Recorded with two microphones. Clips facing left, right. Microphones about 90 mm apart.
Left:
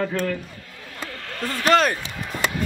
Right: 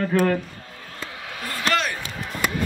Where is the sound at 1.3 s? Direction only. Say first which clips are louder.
Left 4 dB; 10° right (ahead or behind).